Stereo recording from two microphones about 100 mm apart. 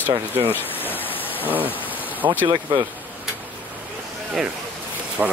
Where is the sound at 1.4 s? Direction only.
15° right (ahead or behind).